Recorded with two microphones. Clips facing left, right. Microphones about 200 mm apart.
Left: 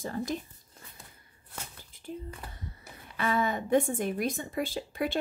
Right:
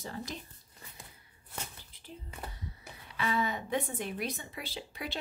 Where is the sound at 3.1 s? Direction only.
50° left (ahead or behind).